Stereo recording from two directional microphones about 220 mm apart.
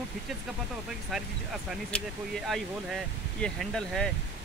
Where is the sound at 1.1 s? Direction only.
Centre (ahead or behind).